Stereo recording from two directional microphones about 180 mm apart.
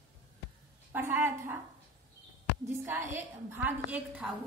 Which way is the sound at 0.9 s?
10° right (ahead or behind).